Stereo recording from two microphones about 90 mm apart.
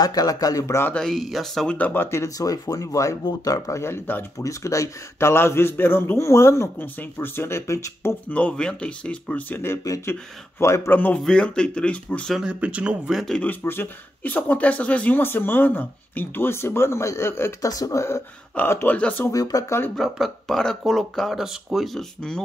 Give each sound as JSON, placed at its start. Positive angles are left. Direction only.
{"t": 0.0, "sound": "a man's voice", "side_deg": 45}
{"t": 0.9, "sound": "speech", "side_deg": 5}
{"t": 1.8, "sound": "speech", "side_deg": 15}
{"t": 2.0, "sound": "a man's voice", "side_deg": 35}
{"t": 8.3, "sound": "speech", "side_deg": 15}
{"t": 11.1, "sound": "speech", "side_deg": 10}
{"t": 12.4, "sound": "speech", "side_deg": -15}
{"t": 13.4, "sound": "speech", "side_deg": 20}
{"t": 18.6, "sound": "speech", "side_deg": 15}
{"t": 19.3, "sound": "speech", "side_deg": 45}
{"t": 20.0, "sound": "speech", "side_deg": 0}